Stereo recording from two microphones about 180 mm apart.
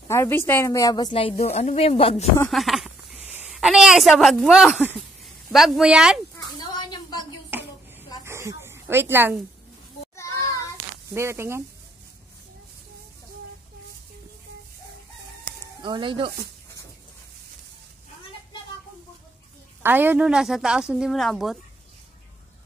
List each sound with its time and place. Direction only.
0.1 s speech: 15° left (ahead or behind)
1.3 s speech: 40° left (ahead or behind)
2.5 s a sound: centre (ahead or behind)
3.3 s a woman's voice: centre (ahead or behind)
6.3 s a sound: 20° left (ahead or behind)
8.3 s a sound: 15° right (ahead or behind)
11.1 s speech: 15° right (ahead or behind)
15.8 s speech: 25° right (ahead or behind)
19.8 s a woman's voice: 10° right (ahead or behind)